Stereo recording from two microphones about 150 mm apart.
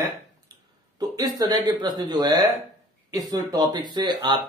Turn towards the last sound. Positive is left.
turn(degrees=-30)  # may be behind; listen again after turning